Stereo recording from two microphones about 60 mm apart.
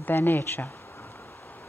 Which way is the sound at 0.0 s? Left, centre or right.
Left.